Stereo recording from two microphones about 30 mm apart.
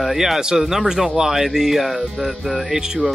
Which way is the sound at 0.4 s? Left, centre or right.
Right.